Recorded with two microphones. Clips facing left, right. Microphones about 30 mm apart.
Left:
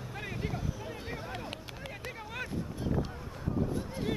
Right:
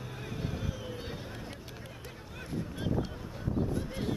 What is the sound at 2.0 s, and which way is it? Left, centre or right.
Vehicle, left.